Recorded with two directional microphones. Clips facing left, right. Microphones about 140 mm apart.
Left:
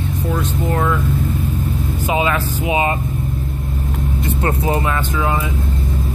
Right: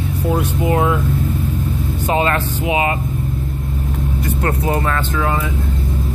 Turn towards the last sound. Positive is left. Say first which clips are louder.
# even
turn(degrees=10)  # may be behind; listen again after turning